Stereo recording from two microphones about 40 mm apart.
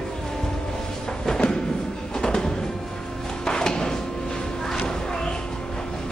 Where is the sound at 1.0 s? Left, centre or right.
Centre.